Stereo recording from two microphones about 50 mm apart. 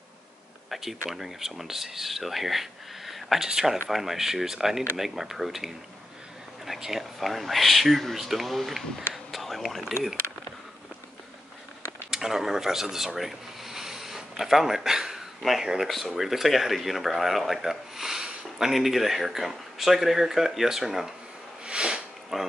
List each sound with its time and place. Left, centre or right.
0.7 s speech: centre
9.1 s a sound: centre
12.1 s speech: centre
21.6 s sniff: centre
22.3 s speech: centre